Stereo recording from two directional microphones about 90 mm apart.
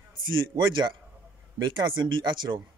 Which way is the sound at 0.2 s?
60° right (ahead or behind).